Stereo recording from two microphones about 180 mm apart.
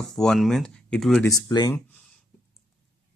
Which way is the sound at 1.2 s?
20° left (ahead or behind).